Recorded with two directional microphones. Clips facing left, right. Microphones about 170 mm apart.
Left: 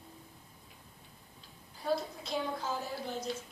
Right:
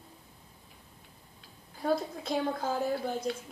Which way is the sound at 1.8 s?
50° right (ahead or behind).